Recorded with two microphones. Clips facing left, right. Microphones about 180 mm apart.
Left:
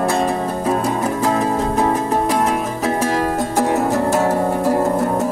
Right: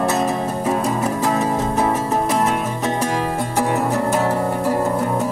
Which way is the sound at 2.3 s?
Centre (ahead or behind).